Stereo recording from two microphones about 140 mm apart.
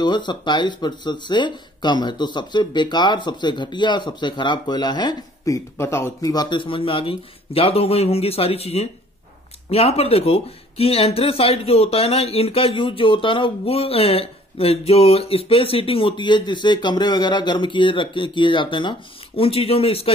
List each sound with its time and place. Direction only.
0.0 s speech: 30° left (ahead or behind)